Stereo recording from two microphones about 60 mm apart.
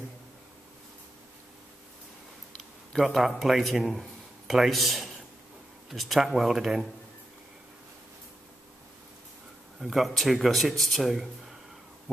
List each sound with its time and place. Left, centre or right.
2.5 s speech: centre
9.8 s speech: centre